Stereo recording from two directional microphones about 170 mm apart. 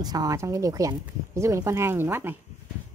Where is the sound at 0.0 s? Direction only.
20° right (ahead or behind).